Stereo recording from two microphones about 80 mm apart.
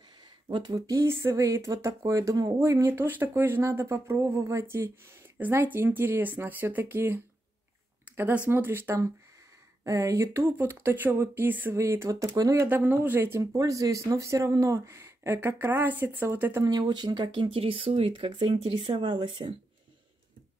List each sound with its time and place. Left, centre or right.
0.5 s speech: right
1.0 s speech: right
2.9 s speech: right
11.7 s speech: right
12.6 s speech: right
13.6 s speech: right
16.6 s speech: right